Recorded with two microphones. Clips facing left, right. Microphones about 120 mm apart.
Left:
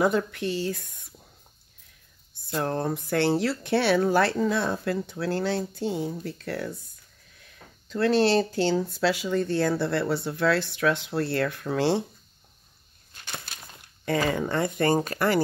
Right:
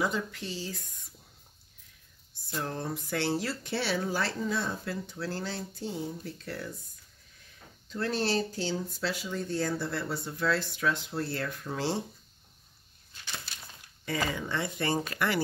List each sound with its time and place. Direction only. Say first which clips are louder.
0.0 s speech: left 8 dB; 60° left (ahead or behind)
2.5 s speech: left 7 dB; 55° left (ahead or behind)
13.1 s speech: left 3 dB; 55° left (ahead or behind)